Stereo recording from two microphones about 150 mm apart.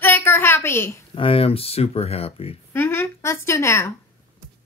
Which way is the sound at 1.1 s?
35° left (ahead or behind).